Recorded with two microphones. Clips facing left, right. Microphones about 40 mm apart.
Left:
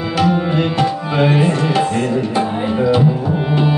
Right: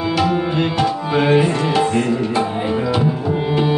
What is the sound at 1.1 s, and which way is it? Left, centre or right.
Tabla, centre.